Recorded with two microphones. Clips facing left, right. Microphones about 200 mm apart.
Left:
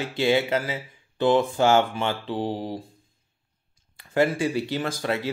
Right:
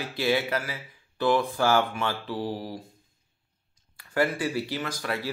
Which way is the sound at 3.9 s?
20° left (ahead or behind).